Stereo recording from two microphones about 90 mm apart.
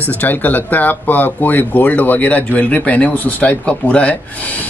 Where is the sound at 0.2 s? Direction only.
20° left (ahead or behind).